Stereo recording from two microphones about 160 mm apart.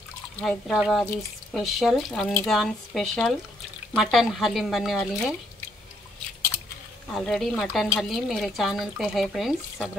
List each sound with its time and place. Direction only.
0.4 s speech: 5° left (ahead or behind)
7.1 s speech: centre (ahead or behind)